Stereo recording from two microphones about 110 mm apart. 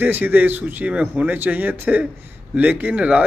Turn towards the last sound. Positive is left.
turn(degrees=-10)  # may be behind; listen again after turning